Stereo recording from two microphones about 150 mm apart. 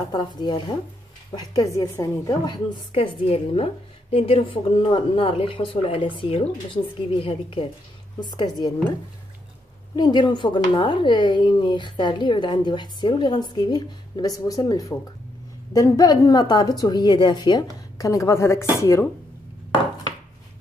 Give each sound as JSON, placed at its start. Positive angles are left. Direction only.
{"t": 0.1, "sound": "a woman's voice", "side_deg": 30}
{"t": 2.9, "sound": "a woman's voice", "side_deg": 40}
{"t": 9.9, "sound": "a woman's voice", "side_deg": 30}